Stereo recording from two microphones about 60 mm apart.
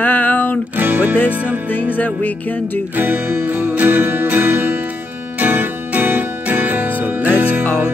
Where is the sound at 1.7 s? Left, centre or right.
Left.